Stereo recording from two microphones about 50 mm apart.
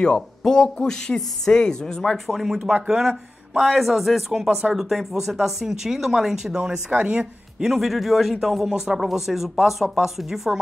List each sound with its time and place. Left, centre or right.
0.0 s speech: centre
2.4 s speech: centre
7.0 s speech: right
7.6 s speech: centre